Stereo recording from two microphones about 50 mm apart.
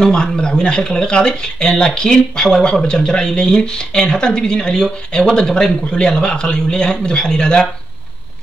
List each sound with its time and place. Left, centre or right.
0.0 s speech: centre